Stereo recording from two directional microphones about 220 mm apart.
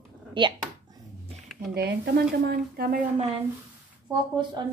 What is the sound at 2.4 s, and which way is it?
Speech, 45° right (ahead or behind).